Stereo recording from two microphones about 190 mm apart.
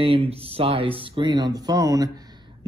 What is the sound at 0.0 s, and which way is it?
Speech, 30° right (ahead or behind).